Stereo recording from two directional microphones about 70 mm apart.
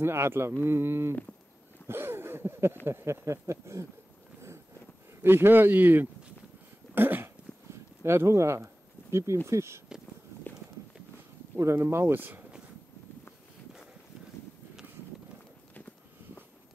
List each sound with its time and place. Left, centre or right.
0.0 s speech: right
1.9 s a sound: right
2.9 s speech: right
5.1 s speech: right
7.0 s dog: right
7.7 s speech: right
11.5 s speech: right